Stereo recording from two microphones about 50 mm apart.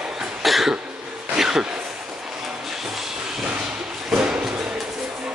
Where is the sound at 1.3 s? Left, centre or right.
Centre.